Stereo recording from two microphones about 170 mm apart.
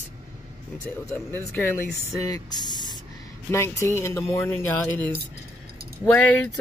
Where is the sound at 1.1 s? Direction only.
15° left (ahead or behind).